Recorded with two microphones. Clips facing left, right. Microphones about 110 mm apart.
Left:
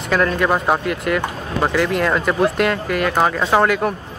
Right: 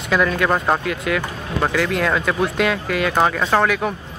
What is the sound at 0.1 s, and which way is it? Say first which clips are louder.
Speech: left 1 dB; centre (ahead or behind).